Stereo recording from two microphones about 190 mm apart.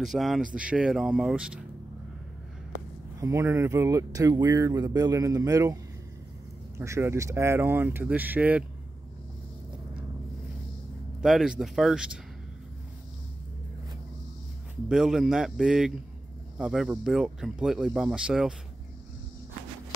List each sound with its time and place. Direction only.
0.0 s speech: centre (ahead or behind)
3.2 s speech: 15° right (ahead or behind)
6.8 s speech: 15° right (ahead or behind)
11.1 s speech: 5° right (ahead or behind)
14.9 s speech: 5° right (ahead or behind)